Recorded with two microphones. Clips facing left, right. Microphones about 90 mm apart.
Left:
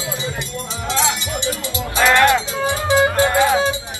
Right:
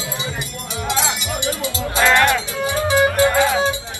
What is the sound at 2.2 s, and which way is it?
Music, 20° left (ahead or behind).